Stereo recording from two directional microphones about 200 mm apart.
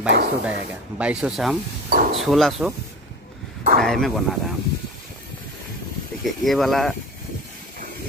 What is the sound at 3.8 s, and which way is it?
Speech, centre (ahead or behind).